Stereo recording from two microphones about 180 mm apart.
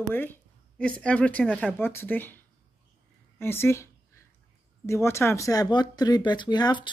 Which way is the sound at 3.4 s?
15° left (ahead or behind).